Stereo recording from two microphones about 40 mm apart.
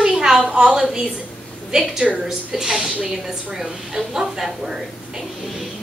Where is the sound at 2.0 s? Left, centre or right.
Centre.